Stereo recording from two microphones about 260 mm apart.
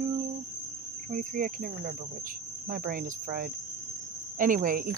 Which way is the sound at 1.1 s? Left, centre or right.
Right.